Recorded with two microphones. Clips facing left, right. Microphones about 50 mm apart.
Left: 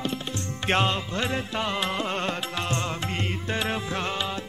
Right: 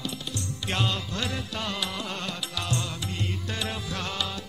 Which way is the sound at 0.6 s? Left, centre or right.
Left.